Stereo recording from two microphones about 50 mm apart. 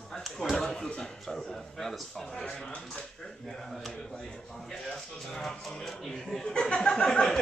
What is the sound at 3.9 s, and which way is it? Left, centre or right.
Speech, centre.